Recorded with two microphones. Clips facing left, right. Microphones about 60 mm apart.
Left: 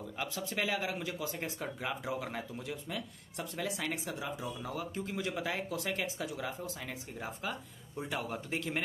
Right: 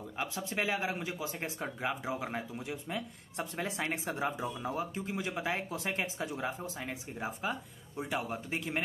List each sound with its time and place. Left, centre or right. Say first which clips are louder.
0.2 s speech: right 1 dB; right
3.3 s speech: right 2 dB; right
4.9 s a man's voice: even; centre